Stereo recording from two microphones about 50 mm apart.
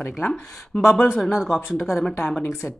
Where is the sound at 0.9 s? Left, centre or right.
Centre.